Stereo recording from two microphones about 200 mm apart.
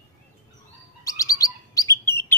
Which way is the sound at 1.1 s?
15° left (ahead or behind).